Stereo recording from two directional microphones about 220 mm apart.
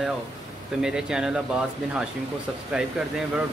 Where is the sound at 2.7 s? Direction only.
5° right (ahead or behind).